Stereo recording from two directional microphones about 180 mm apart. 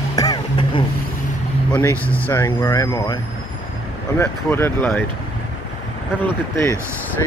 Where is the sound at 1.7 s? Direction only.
10° left (ahead or behind).